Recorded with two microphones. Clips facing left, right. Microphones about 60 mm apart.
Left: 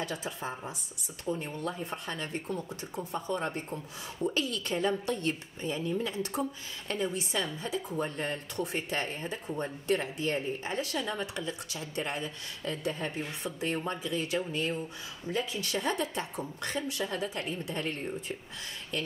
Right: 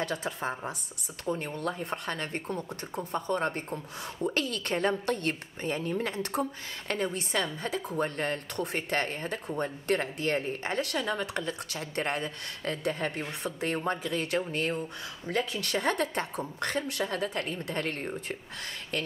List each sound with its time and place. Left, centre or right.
0.0 s speech: right